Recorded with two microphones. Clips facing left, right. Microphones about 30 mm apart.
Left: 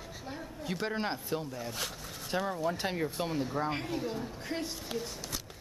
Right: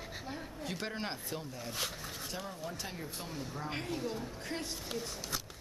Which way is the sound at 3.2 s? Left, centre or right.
Centre.